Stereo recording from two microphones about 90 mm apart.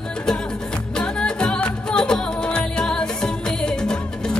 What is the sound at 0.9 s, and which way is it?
Music, 10° left (ahead or behind).